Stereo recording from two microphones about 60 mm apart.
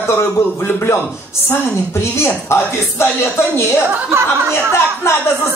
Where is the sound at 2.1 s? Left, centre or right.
Left.